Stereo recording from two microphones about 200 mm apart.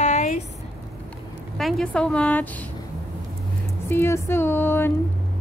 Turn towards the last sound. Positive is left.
turn(degrees=10)  # may be behind; listen again after turning